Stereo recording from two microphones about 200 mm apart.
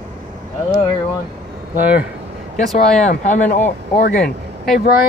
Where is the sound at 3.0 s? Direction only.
40° left (ahead or behind).